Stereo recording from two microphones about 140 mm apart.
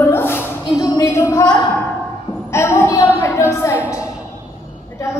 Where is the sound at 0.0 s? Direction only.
15° left (ahead or behind).